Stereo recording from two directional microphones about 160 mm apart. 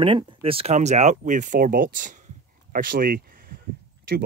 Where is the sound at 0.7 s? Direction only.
45° right (ahead or behind); by 3.5 s 65° right (ahead or behind).